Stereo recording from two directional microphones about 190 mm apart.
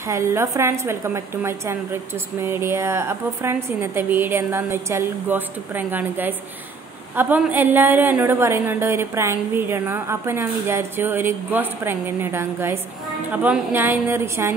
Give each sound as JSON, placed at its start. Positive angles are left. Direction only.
{"t": 0.1, "sound": "a woman's voice", "side_deg": -15}